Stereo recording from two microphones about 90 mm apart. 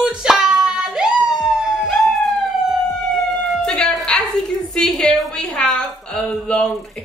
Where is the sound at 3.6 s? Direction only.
10° left (ahead or behind).